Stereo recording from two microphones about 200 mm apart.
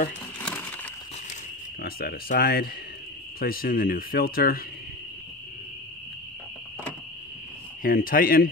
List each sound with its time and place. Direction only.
0.4 s a sound: 5° left (ahead or behind)
1.8 s speech: 50° left (ahead or behind)
7.8 s speech: 45° left (ahead or behind)